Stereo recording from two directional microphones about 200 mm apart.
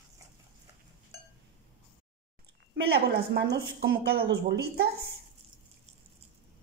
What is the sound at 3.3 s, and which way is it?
A woman's voice, 55° right (ahead or behind).